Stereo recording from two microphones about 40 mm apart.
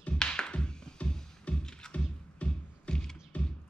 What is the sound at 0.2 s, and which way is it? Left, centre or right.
Music, left.